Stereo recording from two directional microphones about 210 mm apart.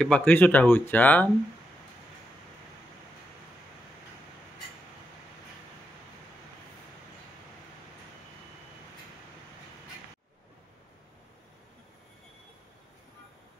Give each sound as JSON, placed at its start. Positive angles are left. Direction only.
{"t": 0.0, "sound": "speech", "side_deg": 5}